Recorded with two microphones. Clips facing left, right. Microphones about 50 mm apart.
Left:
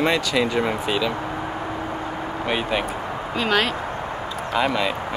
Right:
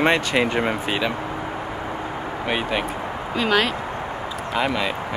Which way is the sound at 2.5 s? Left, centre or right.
Centre.